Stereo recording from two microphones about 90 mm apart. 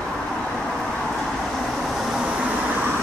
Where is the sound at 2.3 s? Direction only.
10° right (ahead or behind).